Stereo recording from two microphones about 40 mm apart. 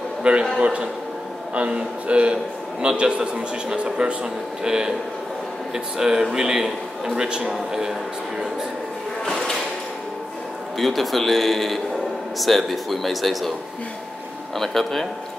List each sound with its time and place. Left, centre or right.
0.2 s a man's voice: right
5.9 s a man's voice: centre
9.2 s a sound: centre
10.8 s speech: centre
14.6 s speech: centre